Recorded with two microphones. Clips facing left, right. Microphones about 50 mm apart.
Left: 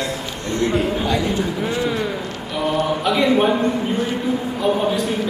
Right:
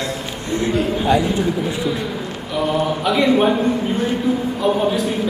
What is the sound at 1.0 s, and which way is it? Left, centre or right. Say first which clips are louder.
Speech: right 4 dB; centre.